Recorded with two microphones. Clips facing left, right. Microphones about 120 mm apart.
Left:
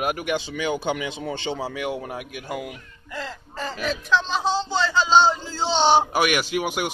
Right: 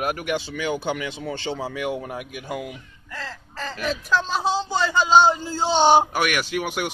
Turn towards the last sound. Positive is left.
turn(degrees=15)  # may be behind; listen again after turning